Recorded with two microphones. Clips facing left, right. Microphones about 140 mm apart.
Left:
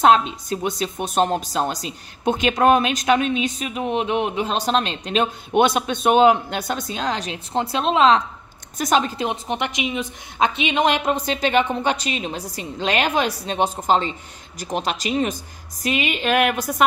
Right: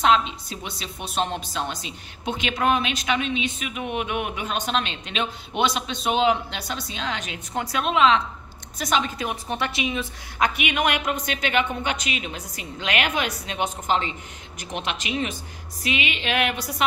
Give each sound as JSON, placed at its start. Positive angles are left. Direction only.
{"t": 0.0, "sound": "a woman's voice", "side_deg": 45}
{"t": 9.2, "sound": "a woman's voice", "side_deg": 20}